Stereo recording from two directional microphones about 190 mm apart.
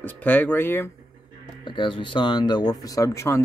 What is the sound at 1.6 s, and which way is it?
Speech, 25° left (ahead or behind).